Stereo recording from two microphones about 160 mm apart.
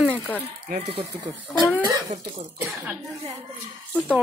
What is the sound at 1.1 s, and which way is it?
Speech, 20° right (ahead or behind).